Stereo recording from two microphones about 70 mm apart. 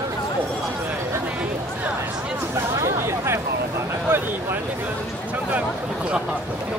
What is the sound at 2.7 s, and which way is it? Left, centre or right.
Hubbub, right.